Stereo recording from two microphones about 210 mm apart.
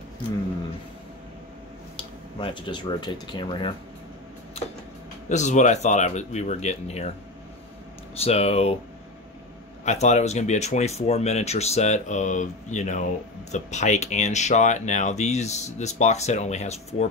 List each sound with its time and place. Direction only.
2.0 s speech: 25° left (ahead or behind)
5.3 s speech: 35° left (ahead or behind)
8.2 s speech: 30° left (ahead or behind)
9.8 s speech: 35° left (ahead or behind)